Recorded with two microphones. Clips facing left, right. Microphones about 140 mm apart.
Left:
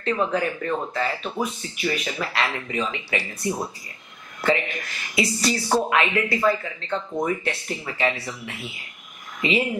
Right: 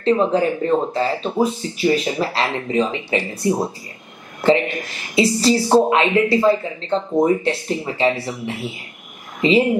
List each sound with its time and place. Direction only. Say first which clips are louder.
0.0 s speech: right 7 dB; 30° right (ahead or behind)